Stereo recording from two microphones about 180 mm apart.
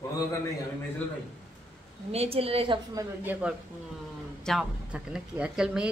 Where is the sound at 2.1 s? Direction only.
35° right (ahead or behind).